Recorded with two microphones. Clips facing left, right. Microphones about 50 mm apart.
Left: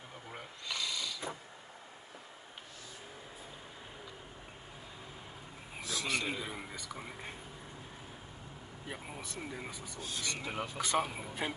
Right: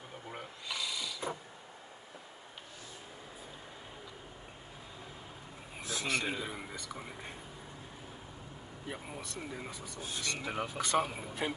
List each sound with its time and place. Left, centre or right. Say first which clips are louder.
0.3 s a sound: even; centre
5.8 s a sound: even; right
6.2 s a man's voice: right 1 dB; centre
8.8 s a man's voice: right 1 dB; centre
9.9 s speech: right 1 dB; centre
10.2 s a man's voice: right 2 dB; centre